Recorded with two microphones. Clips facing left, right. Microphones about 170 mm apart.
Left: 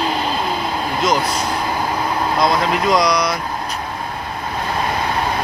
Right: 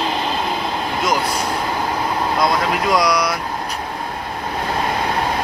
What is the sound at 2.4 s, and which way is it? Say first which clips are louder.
Speech: left 2 dB; 5° right (ahead or behind).